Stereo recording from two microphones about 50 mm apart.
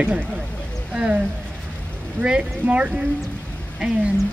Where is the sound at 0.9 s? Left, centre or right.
Centre.